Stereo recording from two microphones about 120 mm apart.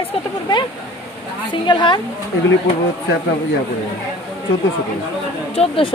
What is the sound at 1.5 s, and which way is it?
Speech, 40° left (ahead or behind).